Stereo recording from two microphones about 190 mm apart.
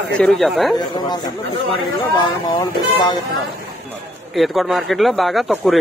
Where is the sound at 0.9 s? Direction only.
20° left (ahead or behind).